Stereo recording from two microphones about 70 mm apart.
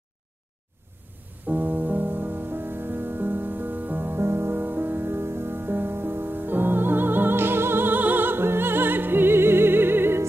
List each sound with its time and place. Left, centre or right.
1.5 s music: right